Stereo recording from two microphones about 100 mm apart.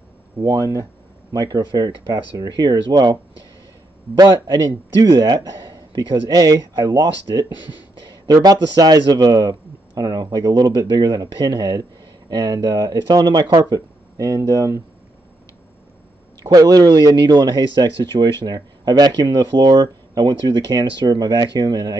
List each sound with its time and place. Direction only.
0.4 s a man's voice: 35° right (ahead or behind)
4.2 s a man's voice: 45° right (ahead or behind)
7.5 s speech: 45° left (ahead or behind)
8.3 s a man's voice: 40° right (ahead or behind)
16.5 s a man's voice: 40° right (ahead or behind)